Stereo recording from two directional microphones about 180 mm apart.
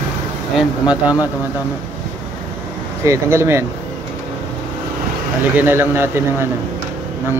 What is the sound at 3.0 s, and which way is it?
Speech, 15° right (ahead or behind).